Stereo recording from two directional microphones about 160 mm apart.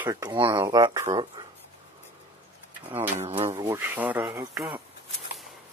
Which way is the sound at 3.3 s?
40° right (ahead or behind).